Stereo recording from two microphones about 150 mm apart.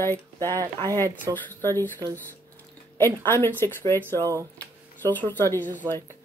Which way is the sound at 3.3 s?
15° left (ahead or behind).